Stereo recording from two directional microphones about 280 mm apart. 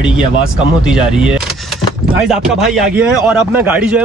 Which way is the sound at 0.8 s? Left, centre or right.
Centre.